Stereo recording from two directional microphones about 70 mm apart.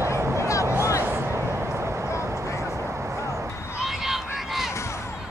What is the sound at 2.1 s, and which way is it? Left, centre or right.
Vehicle, left.